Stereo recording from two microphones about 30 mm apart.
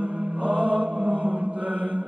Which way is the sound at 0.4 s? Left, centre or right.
Right.